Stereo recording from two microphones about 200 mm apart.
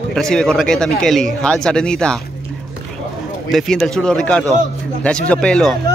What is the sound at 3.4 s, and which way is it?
A man's voice, centre (ahead or behind).